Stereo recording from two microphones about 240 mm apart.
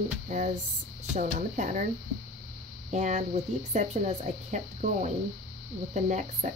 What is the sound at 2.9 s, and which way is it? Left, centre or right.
Speech, right.